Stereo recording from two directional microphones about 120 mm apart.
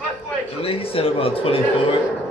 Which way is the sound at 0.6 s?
50° left (ahead or behind).